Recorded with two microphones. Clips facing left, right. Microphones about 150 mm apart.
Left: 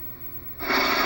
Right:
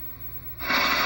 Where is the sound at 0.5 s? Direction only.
40° left (ahead or behind).